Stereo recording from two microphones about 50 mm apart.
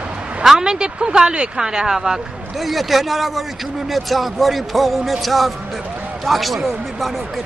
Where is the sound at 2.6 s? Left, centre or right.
Centre.